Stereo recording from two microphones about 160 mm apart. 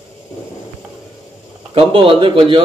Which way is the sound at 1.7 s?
35° right (ahead or behind).